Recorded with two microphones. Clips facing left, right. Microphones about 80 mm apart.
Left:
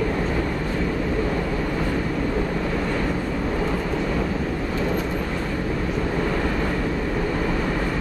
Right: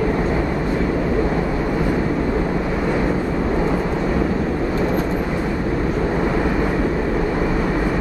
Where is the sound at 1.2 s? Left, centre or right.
Centre.